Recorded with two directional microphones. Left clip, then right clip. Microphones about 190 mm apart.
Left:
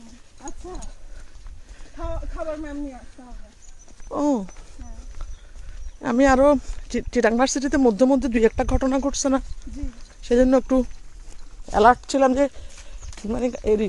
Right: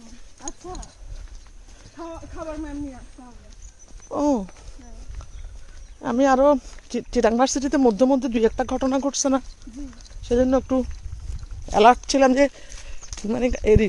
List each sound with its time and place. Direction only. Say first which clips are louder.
0.4 s horse: right 1 dB; centre (ahead or behind)
4.1 s speech: right 1 dB; centre (ahead or behind)
5.9 s speech: left 1 dB; 10° left (ahead or behind)
10.2 s speech: left 2 dB; 15° left (ahead or behind)
11.7 s speech: right 1 dB; 10° right (ahead or behind)
12.7 s a sound: right 4 dB; 5° right (ahead or behind)
13.3 s speech: right 3 dB; 10° right (ahead or behind)